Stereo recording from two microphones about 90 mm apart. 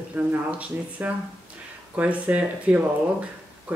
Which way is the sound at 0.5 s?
15° right (ahead or behind).